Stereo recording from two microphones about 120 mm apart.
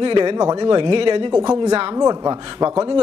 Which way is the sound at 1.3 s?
30° right (ahead or behind).